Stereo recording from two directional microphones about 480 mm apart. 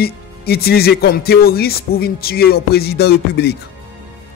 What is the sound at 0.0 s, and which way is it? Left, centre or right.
Speech, centre.